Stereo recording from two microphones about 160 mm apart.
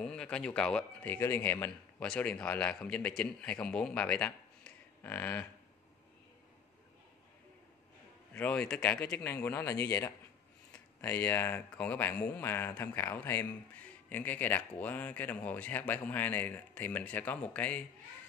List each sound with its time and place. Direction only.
0.0 s speech: 5° left (ahead or behind)
8.3 s speech: 10° left (ahead or behind)